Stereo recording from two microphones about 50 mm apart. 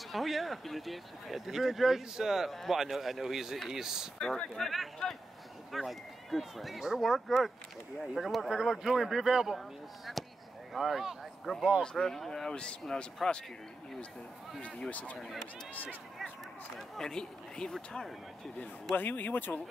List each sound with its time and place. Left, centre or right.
0.1 s speech: centre
4.6 s speech: centre
11.8 s speech: centre
12.4 s speech: centre
14.6 s speech: left
16.7 s speech: centre
17.7 s speech: centre
18.9 s speech: left